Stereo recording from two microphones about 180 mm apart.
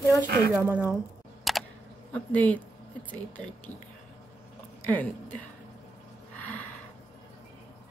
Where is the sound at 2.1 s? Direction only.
10° left (ahead or behind).